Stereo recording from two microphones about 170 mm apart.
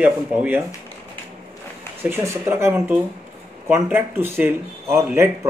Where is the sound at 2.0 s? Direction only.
15° right (ahead or behind).